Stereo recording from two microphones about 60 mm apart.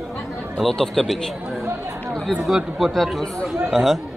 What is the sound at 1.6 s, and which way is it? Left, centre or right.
Chatter, right.